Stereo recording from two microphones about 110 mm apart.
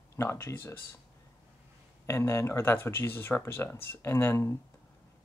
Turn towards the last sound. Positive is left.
turn(degrees=25)  # may be behind; listen again after turning